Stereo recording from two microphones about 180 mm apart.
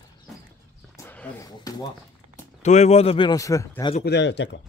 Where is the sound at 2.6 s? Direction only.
40° left (ahead or behind); by 3.9 s 20° left (ahead or behind).